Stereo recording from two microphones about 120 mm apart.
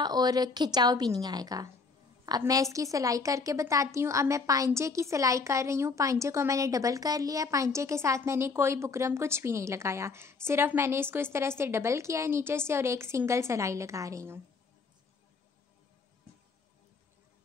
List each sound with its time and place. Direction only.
0.0 s a woman's voice: 35° right (ahead or behind)